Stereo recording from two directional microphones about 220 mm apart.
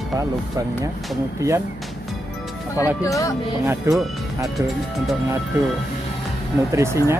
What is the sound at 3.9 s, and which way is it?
Speech, 10° right (ahead or behind).